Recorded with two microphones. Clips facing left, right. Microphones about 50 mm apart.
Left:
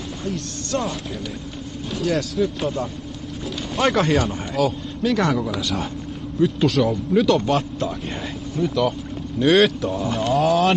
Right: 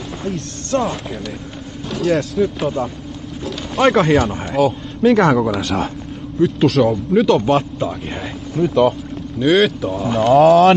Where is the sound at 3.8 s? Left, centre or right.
Centre.